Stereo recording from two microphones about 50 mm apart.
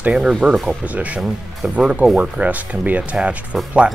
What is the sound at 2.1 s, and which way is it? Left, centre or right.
Speech, right.